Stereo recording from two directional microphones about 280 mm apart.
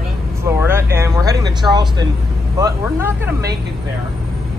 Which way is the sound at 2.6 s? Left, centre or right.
Centre.